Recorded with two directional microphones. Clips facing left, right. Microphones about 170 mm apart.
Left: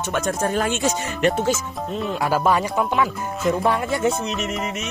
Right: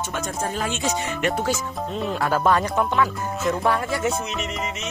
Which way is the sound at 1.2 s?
25° left (ahead or behind).